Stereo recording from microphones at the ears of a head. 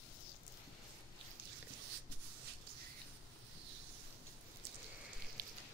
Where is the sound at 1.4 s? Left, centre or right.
Right.